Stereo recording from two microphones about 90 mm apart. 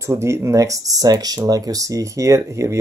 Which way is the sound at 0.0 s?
30° right (ahead or behind).